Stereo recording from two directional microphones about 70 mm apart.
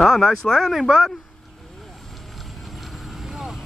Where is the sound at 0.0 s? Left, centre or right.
Centre.